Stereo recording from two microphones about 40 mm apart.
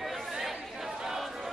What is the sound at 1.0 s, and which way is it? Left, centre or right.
Chatter, centre.